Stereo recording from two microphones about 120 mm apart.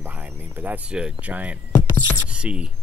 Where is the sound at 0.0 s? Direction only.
15° right (ahead or behind).